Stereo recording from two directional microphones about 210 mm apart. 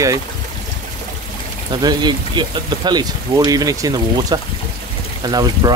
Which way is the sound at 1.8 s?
20° right (ahead or behind).